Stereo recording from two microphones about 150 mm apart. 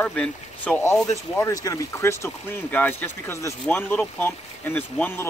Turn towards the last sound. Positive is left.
turn(degrees=15)  # may be behind; listen again after turning